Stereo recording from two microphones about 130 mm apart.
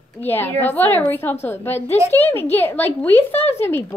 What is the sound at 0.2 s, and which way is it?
A woman's voice, 15° left (ahead or behind).